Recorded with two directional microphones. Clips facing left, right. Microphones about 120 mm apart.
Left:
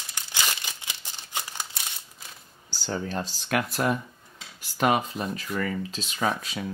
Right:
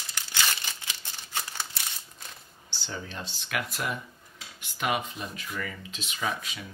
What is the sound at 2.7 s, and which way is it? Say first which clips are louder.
Speech: left 8 dB; 40° left (ahead or behind).